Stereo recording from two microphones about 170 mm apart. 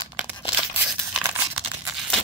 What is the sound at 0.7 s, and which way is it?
Tearing, 5° right (ahead or behind).